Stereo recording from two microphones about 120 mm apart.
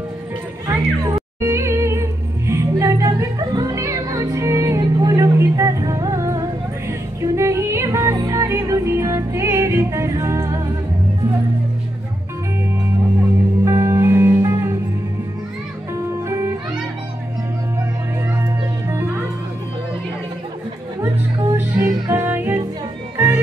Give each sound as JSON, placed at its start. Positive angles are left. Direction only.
{"t": 0.7, "sound": "music", "side_deg": -25}
{"t": 13.7, "sound": "music", "side_deg": -25}
{"t": 18.3, "sound": "music", "side_deg": -20}
{"t": 21.0, "sound": "music", "side_deg": -20}